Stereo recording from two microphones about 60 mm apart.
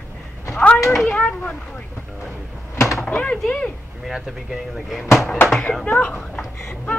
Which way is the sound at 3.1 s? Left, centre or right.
Left.